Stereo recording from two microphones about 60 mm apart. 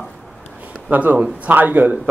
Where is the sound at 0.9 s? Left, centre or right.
Right.